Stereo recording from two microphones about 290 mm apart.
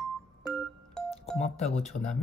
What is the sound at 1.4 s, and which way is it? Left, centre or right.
Speech, left.